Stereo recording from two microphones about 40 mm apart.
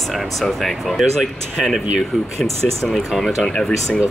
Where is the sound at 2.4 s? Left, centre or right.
Centre.